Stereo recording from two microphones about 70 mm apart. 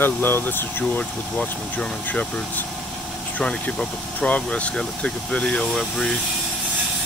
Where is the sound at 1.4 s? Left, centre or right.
Centre.